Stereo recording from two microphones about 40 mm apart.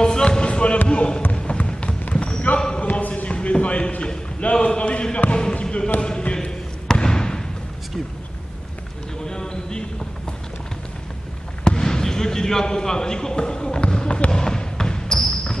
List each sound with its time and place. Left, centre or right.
0.0 s a sound: centre
0.8 s basketball bounce: left
1.3 s music: left
1.7 s clip-clop: left
2.1 s basketball bounce: left
2.8 s a sound: left
5.3 s basketball bounce: left
9.2 s a sound: centre
11.6 s basketball bounce: centre